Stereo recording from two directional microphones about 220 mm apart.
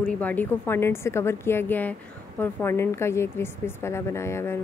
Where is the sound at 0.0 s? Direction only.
5° left (ahead or behind).